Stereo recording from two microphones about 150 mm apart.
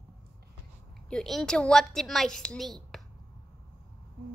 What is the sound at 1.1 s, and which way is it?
A woman's voice, 5° left (ahead or behind).